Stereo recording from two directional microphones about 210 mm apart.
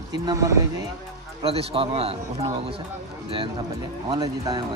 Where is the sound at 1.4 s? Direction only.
25° right (ahead or behind).